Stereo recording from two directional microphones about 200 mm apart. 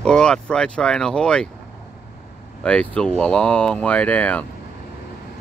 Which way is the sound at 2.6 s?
5° left (ahead or behind).